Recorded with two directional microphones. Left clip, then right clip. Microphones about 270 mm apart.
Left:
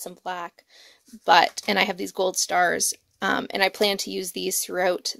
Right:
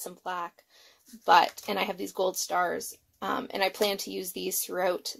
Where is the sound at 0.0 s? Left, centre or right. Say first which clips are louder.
Left 3 dB; left.